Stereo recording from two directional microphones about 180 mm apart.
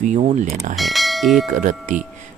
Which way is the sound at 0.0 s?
45° right (ahead or behind).